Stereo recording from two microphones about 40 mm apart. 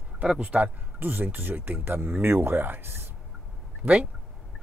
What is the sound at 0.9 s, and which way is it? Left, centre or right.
Speech, right.